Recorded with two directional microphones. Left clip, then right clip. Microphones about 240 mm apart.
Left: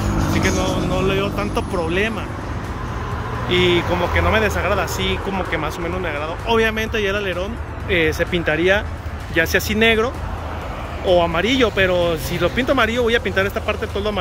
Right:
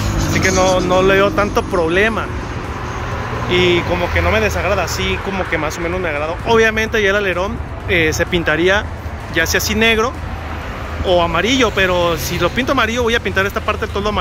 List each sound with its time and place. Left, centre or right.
0.0 s vehicle: left
0.9 s speech: centre
3.4 s speech: centre